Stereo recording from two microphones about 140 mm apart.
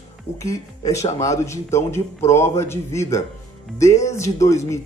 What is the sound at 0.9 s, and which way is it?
Speech, 55° left (ahead or behind).